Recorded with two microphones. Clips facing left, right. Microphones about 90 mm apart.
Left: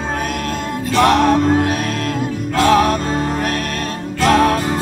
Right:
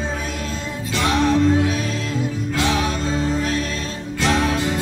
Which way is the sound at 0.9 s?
55° left (ahead or behind).